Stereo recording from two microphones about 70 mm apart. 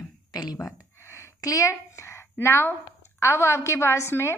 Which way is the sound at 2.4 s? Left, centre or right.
Left.